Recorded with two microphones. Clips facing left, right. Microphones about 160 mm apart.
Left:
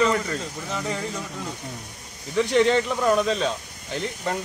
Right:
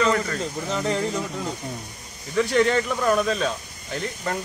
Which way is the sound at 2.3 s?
20° left (ahead or behind).